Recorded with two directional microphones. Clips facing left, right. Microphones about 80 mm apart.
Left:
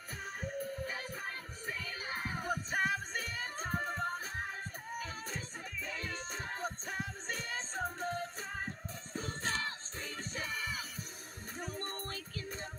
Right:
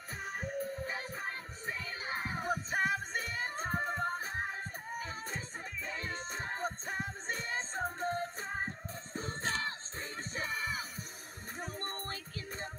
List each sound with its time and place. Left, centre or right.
0.2 s music: right
0.7 s music: right